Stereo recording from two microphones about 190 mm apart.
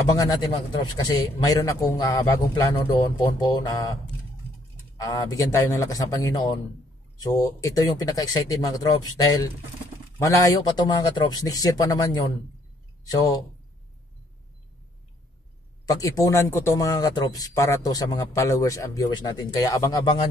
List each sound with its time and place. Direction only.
0.1 s speech: 20° left (ahead or behind)
4.9 s speech: 20° left (ahead or behind)
15.8 s speech: 20° left (ahead or behind)